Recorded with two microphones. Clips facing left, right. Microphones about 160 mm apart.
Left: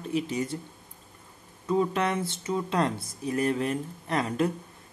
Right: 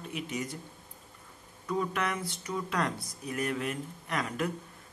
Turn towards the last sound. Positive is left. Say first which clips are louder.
# left 6 dB
turn(degrees=30)  # may be behind; listen again after turning